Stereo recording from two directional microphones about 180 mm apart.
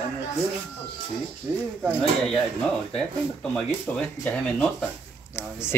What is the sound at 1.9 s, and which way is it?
Speech, 5° left (ahead or behind).